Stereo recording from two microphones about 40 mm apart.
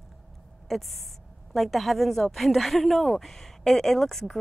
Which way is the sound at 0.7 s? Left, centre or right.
Centre.